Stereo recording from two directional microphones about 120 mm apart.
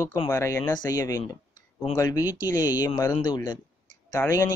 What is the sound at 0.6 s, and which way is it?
Speech, 35° left (ahead or behind).